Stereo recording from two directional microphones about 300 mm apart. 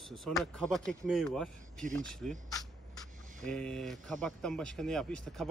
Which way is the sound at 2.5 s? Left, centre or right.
Centre.